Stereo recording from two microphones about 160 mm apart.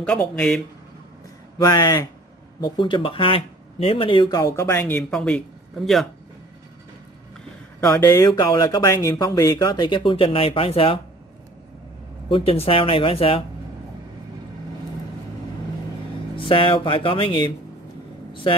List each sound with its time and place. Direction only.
0.0 s speech: 5° left (ahead or behind)
1.6 s speech: 25° left (ahead or behind); by 6.0 s centre (ahead or behind)
7.8 s speech: 15° left (ahead or behind); by 11.0 s 35° left (ahead or behind)
12.3 s speech: 35° left (ahead or behind)
16.3 s speech: 35° left (ahead or behind)